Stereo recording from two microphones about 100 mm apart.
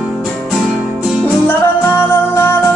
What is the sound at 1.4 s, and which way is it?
Music, 20° left (ahead or behind).